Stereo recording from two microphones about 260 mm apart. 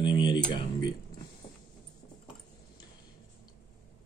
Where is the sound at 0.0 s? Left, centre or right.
Centre.